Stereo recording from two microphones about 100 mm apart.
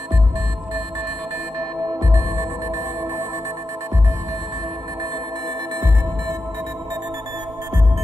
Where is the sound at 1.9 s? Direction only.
40° right (ahead or behind).